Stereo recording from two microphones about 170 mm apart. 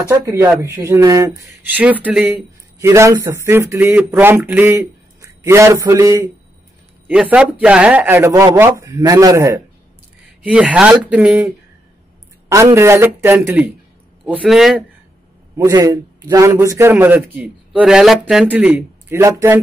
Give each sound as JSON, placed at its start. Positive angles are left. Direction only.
{"t": 0.1, "sound": "a man's voice", "side_deg": -15}
{"t": 10.4, "sound": "a man's voice", "side_deg": -5}
{"t": 12.7, "sound": "a man's voice", "side_deg": -15}
{"t": 14.2, "sound": "a man's voice", "side_deg": -5}
{"t": 15.5, "sound": "a man's voice", "side_deg": -20}